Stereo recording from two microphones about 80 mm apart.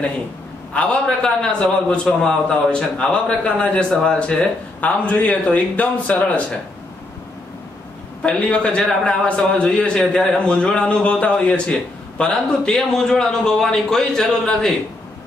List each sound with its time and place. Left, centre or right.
0.7 s a man's voice: centre
8.2 s a man's voice: centre